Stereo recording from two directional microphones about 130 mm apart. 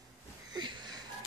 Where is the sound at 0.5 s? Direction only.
35° right (ahead or behind).